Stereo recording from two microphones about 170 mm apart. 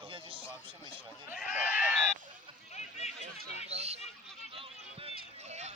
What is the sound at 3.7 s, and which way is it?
Speech, 40° right (ahead or behind).